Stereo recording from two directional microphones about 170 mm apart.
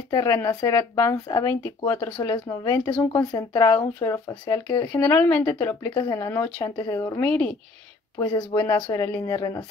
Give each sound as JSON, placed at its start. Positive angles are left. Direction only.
{"t": 0.1, "sound": "speech", "side_deg": 20}
{"t": 4.8, "sound": "speech", "side_deg": 10}
{"t": 7.2, "sound": "speech", "side_deg": 10}
{"t": 8.2, "sound": "speech", "side_deg": 25}